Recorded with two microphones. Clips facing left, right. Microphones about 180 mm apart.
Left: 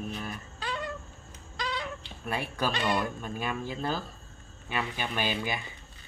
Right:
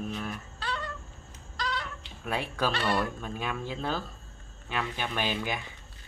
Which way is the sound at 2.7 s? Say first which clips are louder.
Even; 15° left (ahead or behind).